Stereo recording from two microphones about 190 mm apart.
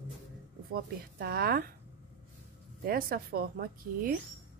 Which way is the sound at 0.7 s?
55° right (ahead or behind).